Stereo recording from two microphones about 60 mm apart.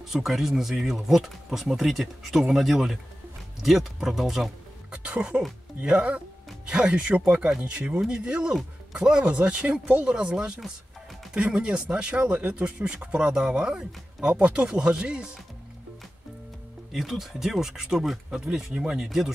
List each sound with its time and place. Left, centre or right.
0.1 s speech: centre
4.9 s speech: centre
10.1 s speech: centre
16.9 s speech: centre